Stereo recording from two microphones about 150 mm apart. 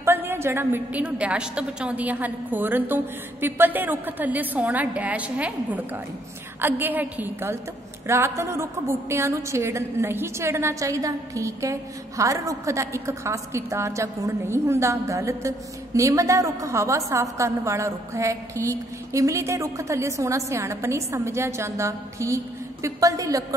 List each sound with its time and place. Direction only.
0.0 s a woman's voice: 15° right (ahead or behind)